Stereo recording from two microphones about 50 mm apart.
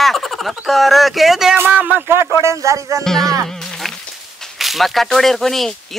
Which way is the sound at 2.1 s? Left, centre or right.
Right.